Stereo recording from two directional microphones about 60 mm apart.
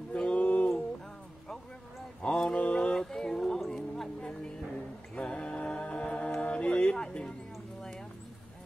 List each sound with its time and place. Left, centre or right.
0.1 s a sound: centre
2.2 s mantra: centre
2.5 s music: centre
5.1 s a capella: centre
6.4 s music: centre